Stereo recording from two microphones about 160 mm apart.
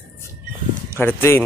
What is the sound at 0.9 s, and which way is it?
Speech, 15° left (ahead or behind).